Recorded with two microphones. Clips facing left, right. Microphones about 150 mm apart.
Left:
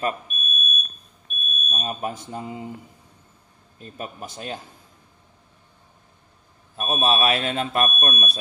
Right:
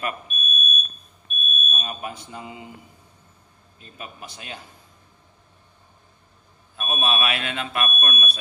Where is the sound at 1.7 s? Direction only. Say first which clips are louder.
Left 6 dB; 35° left (ahead or behind).